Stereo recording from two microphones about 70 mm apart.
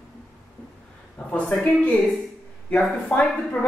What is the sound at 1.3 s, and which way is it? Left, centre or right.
Speech, left.